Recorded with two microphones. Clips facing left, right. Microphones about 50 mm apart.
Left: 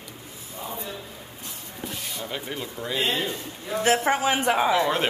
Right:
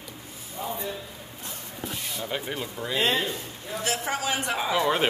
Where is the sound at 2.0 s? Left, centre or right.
Centre.